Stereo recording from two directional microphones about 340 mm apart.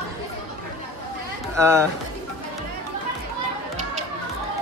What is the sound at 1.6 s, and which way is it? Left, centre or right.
Speech, centre.